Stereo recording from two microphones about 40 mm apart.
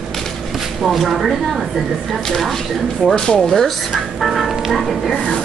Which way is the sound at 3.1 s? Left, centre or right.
Centre.